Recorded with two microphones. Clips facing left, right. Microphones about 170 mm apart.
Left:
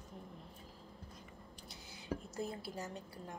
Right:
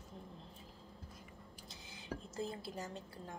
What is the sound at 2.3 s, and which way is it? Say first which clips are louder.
A woman's voice: even; 25° right (ahead or behind).